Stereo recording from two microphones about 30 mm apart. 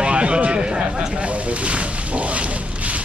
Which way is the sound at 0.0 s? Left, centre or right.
Right.